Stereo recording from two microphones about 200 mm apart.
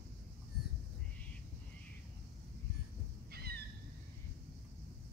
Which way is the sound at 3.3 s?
50° right (ahead or behind).